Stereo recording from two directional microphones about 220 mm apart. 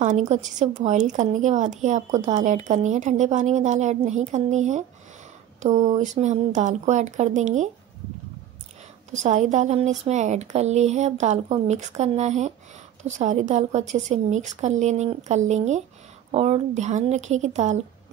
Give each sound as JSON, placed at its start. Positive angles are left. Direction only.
{"t": 0.0, "sound": "a woman's voice", "side_deg": -35}
{"t": 9.1, "sound": "a woman's voice", "side_deg": -35}